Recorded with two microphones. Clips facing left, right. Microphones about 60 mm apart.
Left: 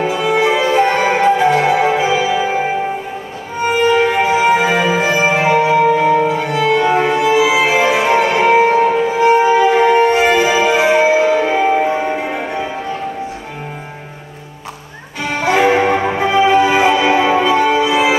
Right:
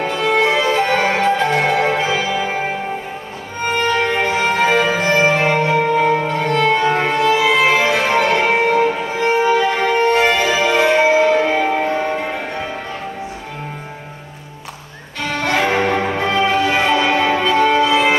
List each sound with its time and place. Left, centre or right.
0.0 s music: centre
15.2 s music: centre